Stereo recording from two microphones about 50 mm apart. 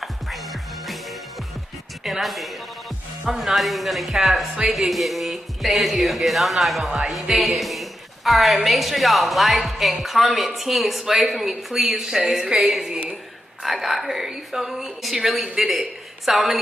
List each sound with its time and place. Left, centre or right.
0.0 s music: centre
2.0 s speech: centre